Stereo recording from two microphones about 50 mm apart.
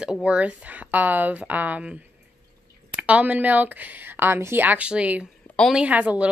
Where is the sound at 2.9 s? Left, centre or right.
Right.